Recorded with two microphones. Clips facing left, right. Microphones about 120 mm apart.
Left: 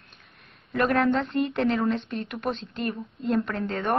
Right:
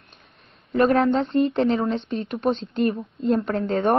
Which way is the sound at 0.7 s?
25° right (ahead or behind).